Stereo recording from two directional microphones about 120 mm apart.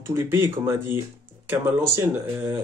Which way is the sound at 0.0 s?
20° right (ahead or behind).